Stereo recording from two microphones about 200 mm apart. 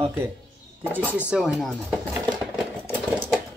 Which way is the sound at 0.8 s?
10° right (ahead or behind).